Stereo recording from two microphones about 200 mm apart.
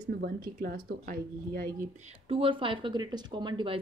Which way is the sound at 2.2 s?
25° right (ahead or behind).